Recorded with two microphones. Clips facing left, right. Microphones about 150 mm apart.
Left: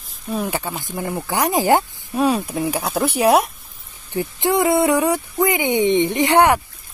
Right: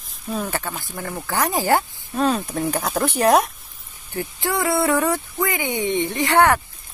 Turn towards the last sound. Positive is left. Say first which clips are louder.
# left 2 dB
turn(degrees=15)  # may be behind; listen again after turning